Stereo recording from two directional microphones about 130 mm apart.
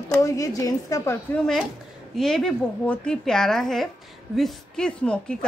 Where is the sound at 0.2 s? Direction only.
25° left (ahead or behind).